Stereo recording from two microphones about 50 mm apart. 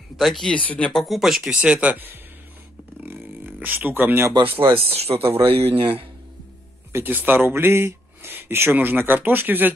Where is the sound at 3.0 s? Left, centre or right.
Right.